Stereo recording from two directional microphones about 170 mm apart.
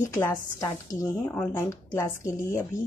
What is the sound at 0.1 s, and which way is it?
A woman's voice, 20° left (ahead or behind).